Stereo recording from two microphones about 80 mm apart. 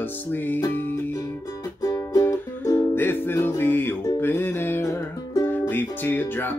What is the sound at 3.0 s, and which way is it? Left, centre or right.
Music, left.